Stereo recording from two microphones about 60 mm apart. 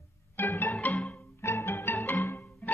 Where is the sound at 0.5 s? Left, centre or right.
Left.